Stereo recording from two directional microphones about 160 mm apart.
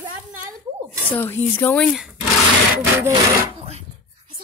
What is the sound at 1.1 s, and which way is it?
Speech, 10° left (ahead or behind).